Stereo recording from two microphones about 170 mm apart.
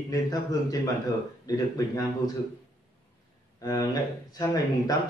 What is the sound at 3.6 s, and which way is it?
A man's voice, 20° left (ahead or behind).